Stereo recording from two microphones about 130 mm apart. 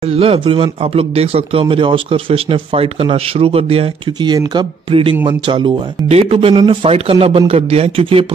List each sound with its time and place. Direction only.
0.1 s speech: 50° right (ahead or behind)
6.0 s speech: 50° right (ahead or behind)